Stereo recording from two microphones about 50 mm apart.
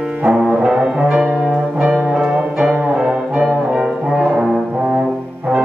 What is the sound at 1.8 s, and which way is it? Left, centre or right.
Music, centre.